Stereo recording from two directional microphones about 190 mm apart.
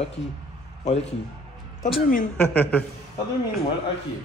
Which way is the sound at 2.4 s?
10° left (ahead or behind).